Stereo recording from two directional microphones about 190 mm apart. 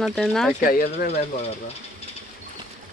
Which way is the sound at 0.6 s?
50° left (ahead or behind).